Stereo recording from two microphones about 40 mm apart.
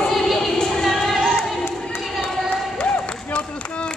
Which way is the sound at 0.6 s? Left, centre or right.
Centre.